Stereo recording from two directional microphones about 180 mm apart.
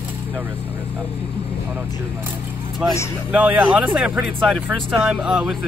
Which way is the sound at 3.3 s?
10° right (ahead or behind).